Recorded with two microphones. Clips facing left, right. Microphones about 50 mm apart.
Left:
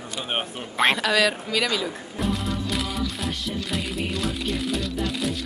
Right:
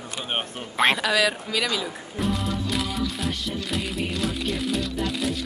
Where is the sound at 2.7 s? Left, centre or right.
Centre.